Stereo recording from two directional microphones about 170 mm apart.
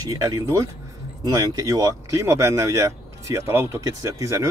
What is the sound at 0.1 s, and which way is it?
Speech, 20° right (ahead or behind).